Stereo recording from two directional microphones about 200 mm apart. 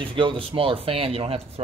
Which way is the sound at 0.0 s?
25° right (ahead or behind).